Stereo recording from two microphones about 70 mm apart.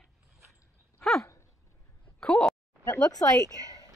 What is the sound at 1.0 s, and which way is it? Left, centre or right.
Dog, centre.